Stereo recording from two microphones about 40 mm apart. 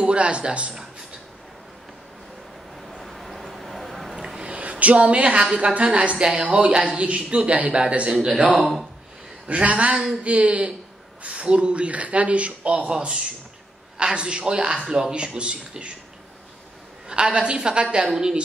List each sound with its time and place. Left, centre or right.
0.0 s speech: right
2.9 s a sound: centre
4.6 s a sound: right
4.9 s a man's voice: right
8.3 s speech: right
12.9 s a man's voice: right
17.1 s a man's voice: right